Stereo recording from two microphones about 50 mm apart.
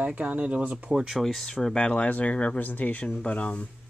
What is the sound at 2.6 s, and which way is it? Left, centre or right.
Speech, left.